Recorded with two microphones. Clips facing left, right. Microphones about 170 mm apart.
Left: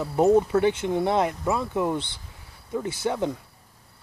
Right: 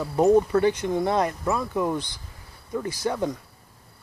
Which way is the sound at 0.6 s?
20° left (ahead or behind).